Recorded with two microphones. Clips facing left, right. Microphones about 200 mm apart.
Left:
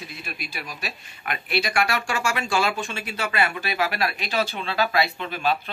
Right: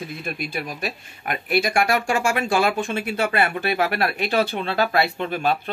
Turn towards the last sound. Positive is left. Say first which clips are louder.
# right 3 dB
turn(degrees=-50)  # may be behind; listen again after turning